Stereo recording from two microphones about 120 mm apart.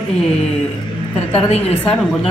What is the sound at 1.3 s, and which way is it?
Speech, 60° left (ahead or behind).